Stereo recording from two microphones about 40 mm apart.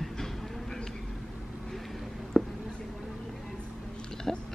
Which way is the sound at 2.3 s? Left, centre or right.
Centre.